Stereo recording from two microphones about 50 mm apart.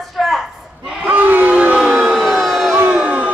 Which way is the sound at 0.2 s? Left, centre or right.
Centre.